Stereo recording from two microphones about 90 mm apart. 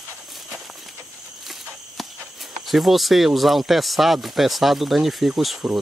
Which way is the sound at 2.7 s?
Centre (ahead or behind).